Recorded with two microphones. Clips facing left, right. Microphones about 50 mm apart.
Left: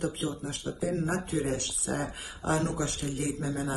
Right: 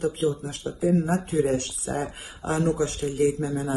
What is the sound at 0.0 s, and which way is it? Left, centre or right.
Speech, right.